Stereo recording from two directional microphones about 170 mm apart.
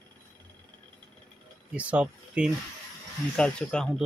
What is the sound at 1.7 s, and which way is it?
Speech, 10° right (ahead or behind).